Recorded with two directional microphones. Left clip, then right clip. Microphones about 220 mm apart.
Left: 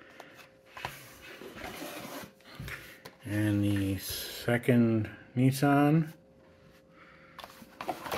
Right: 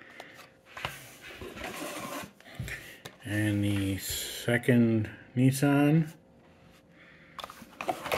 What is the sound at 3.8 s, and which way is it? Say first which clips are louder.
Speech: right 2 dB; centre (ahead or behind).